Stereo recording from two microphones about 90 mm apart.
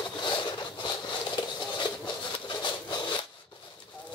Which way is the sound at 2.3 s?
60° left (ahead or behind).